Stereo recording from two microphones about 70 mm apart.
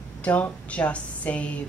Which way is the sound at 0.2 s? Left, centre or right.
Left.